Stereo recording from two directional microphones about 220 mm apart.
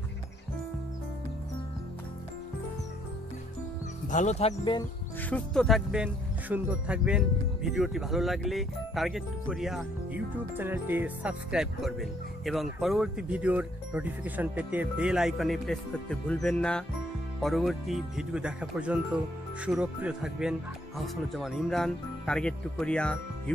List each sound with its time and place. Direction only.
4.1 s speech: 35° left (ahead or behind)
5.3 s speech: 5° left (ahead or behind)